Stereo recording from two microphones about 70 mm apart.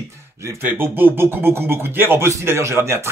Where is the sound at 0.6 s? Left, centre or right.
Right.